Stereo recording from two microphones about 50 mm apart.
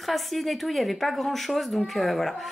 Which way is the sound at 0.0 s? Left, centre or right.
Centre.